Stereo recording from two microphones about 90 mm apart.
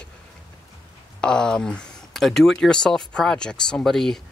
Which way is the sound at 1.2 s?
10° left (ahead or behind).